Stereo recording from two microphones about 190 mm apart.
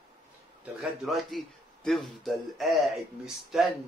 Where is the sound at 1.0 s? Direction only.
Centre (ahead or behind).